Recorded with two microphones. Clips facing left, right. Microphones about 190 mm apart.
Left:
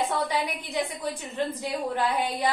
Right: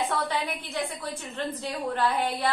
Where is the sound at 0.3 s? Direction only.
15° left (ahead or behind).